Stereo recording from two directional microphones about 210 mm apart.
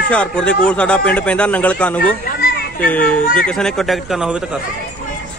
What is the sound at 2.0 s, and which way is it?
Children playing, 40° left (ahead or behind).